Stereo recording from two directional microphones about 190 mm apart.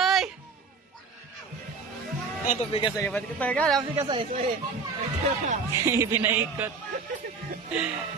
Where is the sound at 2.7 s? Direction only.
25° left (ahead or behind).